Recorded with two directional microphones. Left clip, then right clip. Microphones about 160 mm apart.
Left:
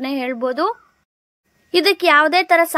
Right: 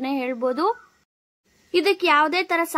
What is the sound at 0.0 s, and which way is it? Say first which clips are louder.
A woman's voice: left 3 dB; 20° left (ahead or behind).